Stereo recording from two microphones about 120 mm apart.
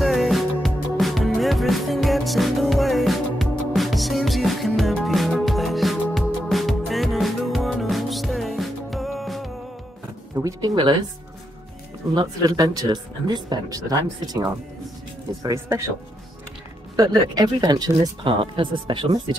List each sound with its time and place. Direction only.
0.0 s music: centre (ahead or behind)
10.3 s a sound: 30° right (ahead or behind)
12.1 s speech: 35° right (ahead or behind)
16.9 s speech: 35° right (ahead or behind)
18.2 s speech: 45° right (ahead or behind)